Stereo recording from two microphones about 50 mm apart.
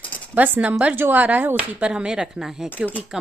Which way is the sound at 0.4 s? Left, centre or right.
Right.